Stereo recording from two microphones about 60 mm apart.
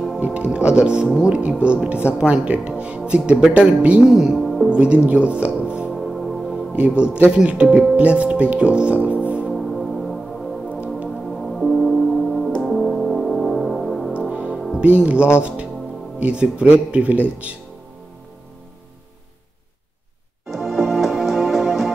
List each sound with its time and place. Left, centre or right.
0.2 s speech: right
4.0 s speech: centre
4.6 s speech: centre
5.9 s music: centre
6.7 s speech: centre
9.5 s music: centre
11.4 s music: centre
14.8 s speech: right
20.4 s music: centre